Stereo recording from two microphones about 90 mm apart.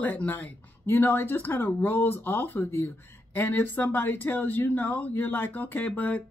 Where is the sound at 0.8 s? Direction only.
25° left (ahead or behind).